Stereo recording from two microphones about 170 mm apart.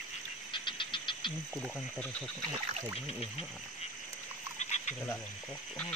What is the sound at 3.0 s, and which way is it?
Speech, 35° left (ahead or behind).